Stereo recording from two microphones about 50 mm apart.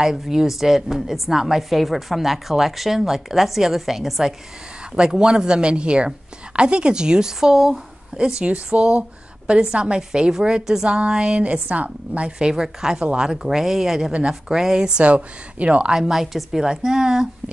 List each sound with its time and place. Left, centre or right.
0.0 s a woman's voice: centre; by 12.3 s right
12.3 s a woman's voice: centre
13.3 s a woman's voice: centre
16.0 s a woman's voice: centre